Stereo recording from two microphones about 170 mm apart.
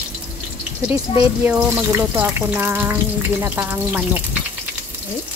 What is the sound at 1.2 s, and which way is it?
Speech, 10° right (ahead or behind).